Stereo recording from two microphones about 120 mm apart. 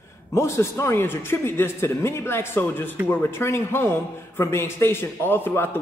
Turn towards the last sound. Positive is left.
turn(degrees=20)  # may be behind; listen again after turning